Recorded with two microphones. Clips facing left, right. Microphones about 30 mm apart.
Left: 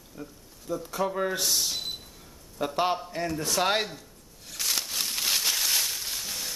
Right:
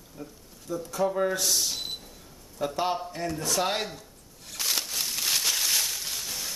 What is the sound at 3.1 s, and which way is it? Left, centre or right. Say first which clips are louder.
Speech: left 1 dB; centre.